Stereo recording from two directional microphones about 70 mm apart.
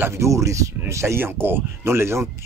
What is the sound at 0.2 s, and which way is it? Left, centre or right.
Speech, right.